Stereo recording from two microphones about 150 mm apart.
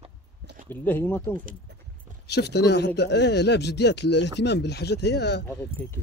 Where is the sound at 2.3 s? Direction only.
90° left.